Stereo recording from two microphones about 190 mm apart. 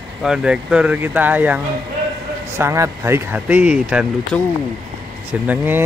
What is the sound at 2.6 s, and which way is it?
Speech, 15° right (ahead or behind).